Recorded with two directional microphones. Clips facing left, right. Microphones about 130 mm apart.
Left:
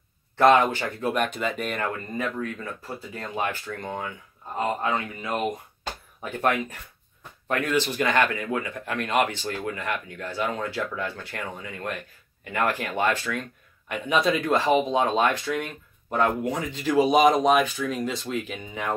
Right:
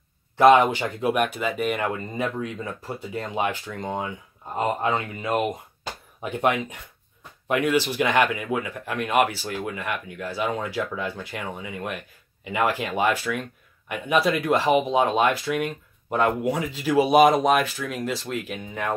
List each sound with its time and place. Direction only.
0.4 s speech: 15° right (ahead or behind)